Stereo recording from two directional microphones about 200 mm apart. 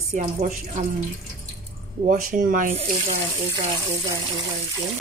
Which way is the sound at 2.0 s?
40° right (ahead or behind).